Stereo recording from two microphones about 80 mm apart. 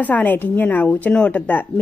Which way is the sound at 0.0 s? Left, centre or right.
Centre.